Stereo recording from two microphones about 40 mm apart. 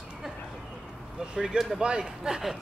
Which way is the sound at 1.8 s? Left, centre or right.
Right.